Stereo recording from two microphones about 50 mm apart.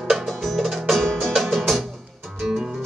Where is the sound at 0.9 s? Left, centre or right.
Centre.